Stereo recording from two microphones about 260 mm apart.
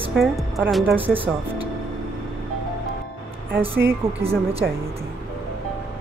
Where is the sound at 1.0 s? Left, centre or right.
Right.